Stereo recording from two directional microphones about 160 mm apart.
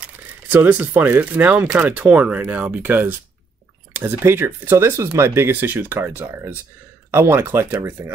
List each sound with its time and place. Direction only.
0.0 s speech: 10° right (ahead or behind)